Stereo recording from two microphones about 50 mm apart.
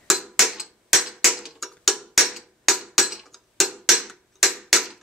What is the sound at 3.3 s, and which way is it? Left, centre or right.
Tick-tock, centre.